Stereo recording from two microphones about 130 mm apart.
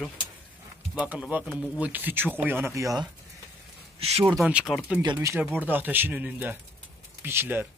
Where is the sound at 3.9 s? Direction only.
50° right (ahead or behind).